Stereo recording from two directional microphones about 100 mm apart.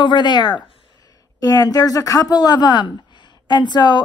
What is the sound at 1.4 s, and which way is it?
A woman's voice, 35° left (ahead or behind).